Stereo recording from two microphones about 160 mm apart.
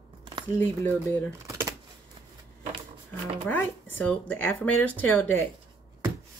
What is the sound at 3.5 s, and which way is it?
Speech, 10° left (ahead or behind).